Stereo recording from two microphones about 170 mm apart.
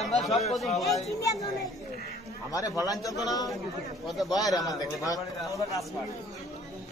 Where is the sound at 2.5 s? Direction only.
20° left (ahead or behind).